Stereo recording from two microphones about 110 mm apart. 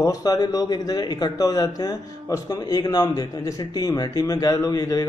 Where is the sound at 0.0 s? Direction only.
30° left (ahead or behind).